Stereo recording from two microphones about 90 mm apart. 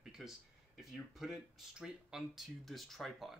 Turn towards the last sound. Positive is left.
turn(degrees=0)  # may be behind; listen again after turning